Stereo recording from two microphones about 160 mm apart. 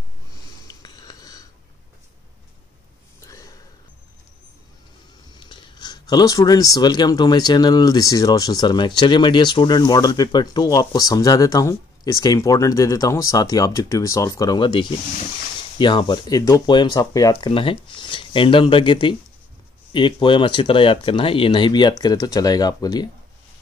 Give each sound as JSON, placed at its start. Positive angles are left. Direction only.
{"t": 0.3, "sound": "wheeze", "side_deg": 20}
{"t": 3.2, "sound": "a sound", "side_deg": 20}
{"t": 5.3, "sound": "speech", "side_deg": 30}